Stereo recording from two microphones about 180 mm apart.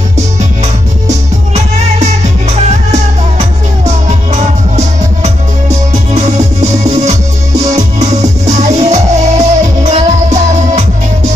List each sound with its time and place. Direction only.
1.5 s music: 40° right (ahead or behind)
8.0 s music: 40° right (ahead or behind)